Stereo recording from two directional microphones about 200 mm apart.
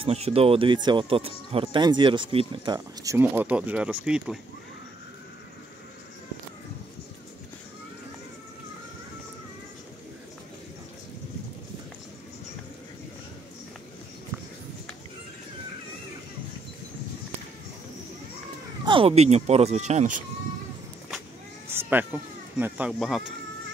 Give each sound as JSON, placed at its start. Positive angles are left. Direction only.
{"t": 0.0, "sound": "speech", "side_deg": -30}
{"t": 18.9, "sound": "speech", "side_deg": -30}
{"t": 21.8, "sound": "speech", "side_deg": -10}